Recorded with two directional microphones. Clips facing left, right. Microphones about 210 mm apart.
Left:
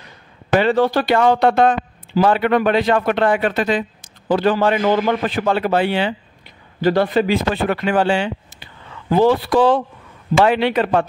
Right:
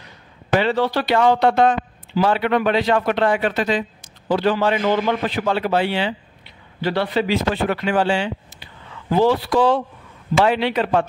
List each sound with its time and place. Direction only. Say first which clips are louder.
0.6 s a man's voice: left 4 dB; 50° left (ahead or behind)